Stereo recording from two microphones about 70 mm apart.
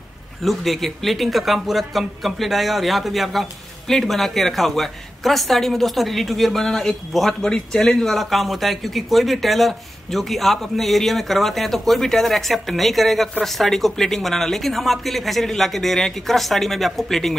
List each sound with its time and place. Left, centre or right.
0.4 s speech: centre